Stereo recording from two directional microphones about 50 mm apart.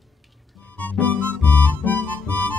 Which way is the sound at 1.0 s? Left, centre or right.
Left.